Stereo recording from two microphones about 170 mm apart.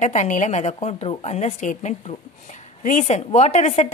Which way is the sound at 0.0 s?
45° left (ahead or behind).